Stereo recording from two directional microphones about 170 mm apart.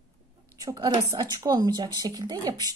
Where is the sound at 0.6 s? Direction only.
25° right (ahead or behind).